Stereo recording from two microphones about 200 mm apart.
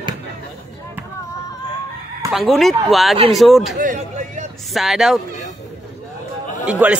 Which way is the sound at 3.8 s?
40° right (ahead or behind).